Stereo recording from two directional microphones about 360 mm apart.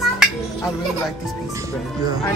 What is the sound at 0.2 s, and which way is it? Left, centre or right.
Music, centre.